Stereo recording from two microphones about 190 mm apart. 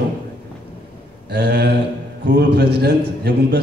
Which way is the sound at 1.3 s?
60° right (ahead or behind).